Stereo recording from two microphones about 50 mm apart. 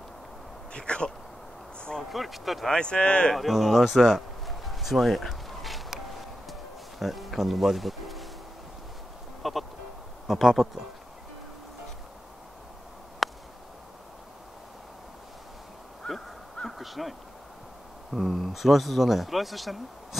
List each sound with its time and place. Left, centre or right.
0.7 s speech: centre
2.0 s speech: centre
2.7 s speech: centre
3.3 s a sound: centre
7.0 s speech: centre
9.4 s speech: centre
13.2 s a sound: centre
16.6 s a sound: centre
18.1 s speech: centre